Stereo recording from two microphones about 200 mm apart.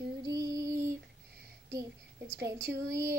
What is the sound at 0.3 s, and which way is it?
Music, 15° right (ahead or behind).